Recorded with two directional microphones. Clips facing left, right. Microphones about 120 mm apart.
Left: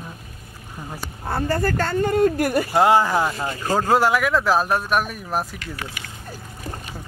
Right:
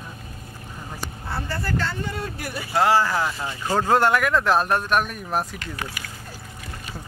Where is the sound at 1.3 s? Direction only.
45° left (ahead or behind).